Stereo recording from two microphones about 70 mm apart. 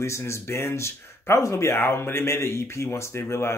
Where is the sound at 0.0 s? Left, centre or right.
Left.